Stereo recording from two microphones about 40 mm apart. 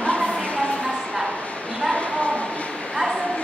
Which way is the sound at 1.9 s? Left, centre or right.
Left.